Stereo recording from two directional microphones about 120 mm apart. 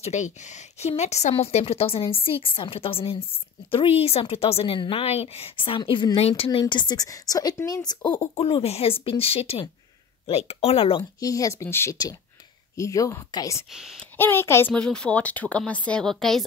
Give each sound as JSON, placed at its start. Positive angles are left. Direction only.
{"t": 0.0, "sound": "a woman's voice", "side_deg": 75}
{"t": 5.8, "sound": "a woman's voice", "side_deg": 40}
{"t": 6.6, "sound": "a woman's voice", "side_deg": 35}
{"t": 8.4, "sound": "a woman's voice", "side_deg": 50}
{"t": 11.0, "sound": "speech", "side_deg": 30}
{"t": 13.7, "sound": "speech", "side_deg": -5}
{"t": 14.1, "sound": "speech", "side_deg": 20}
{"t": 14.7, "sound": "speech", "side_deg": 5}